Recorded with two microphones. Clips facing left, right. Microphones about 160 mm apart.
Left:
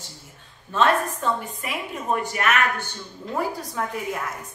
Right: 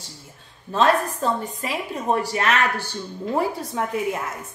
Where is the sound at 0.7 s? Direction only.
35° right (ahead or behind).